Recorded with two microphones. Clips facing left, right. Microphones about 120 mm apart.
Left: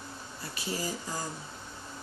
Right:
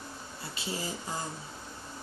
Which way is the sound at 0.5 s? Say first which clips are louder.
Left 2 dB; 25° right (ahead or behind).